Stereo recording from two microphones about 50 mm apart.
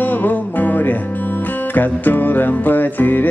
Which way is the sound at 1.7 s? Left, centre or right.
Left.